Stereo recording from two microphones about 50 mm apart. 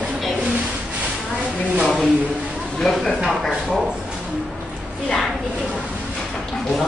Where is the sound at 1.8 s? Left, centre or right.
Left.